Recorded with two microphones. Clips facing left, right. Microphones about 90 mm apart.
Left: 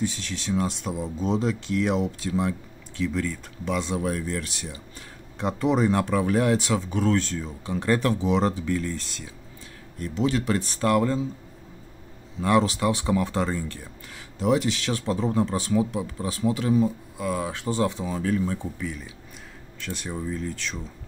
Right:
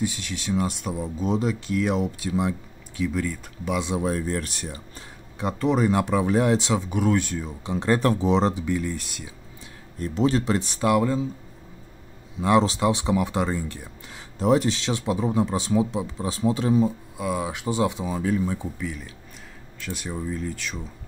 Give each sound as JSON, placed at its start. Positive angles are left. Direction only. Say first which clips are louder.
{"t": 0.0, "sound": "speech", "louder": "right 1 dB", "side_deg": -10}
{"t": 4.3, "sound": "speech", "louder": "right 2 dB", "side_deg": -45}
{"t": 5.4, "sound": "speech", "louder": "even", "side_deg": 0}
{"t": 6.0, "sound": "speech", "louder": "right 1 dB", "side_deg": -20}
{"t": 8.0, "sound": "speech", "louder": "right 2 dB", "side_deg": -35}
{"t": 8.4, "sound": "speech", "louder": "right 1 dB", "side_deg": -20}
{"t": 9.9, "sound": "speech", "louder": "right 3 dB", "side_deg": -35}
{"t": 10.4, "sound": "speech", "louder": "right 1 dB", "side_deg": -20}
{"t": 12.4, "sound": "speech", "louder": "right 2 dB", "side_deg": -20}
{"t": 14.4, "sound": "speech", "louder": "right 2 dB", "side_deg": -35}
{"t": 14.8, "sound": "speech", "louder": "right 1 dB", "side_deg": -20}
{"t": 17.3, "sound": "speech", "louder": "right 1 dB", "side_deg": -10}